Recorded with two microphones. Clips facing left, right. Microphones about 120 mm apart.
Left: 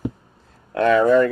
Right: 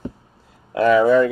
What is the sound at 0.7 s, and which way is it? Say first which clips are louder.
Speech: right 1 dB; 5° right (ahead or behind).